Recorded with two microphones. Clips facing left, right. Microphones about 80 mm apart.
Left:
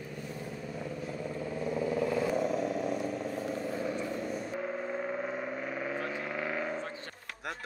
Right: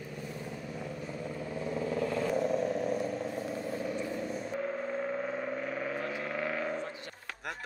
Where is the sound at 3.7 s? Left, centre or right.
Left.